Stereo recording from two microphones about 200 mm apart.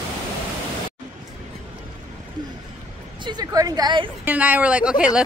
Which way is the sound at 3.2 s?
20° right (ahead or behind).